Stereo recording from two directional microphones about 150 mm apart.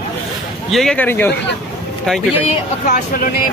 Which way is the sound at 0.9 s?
10° left (ahead or behind).